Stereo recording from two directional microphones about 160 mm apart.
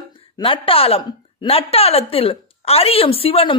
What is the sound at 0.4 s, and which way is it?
A woman's voice, 35° left (ahead or behind).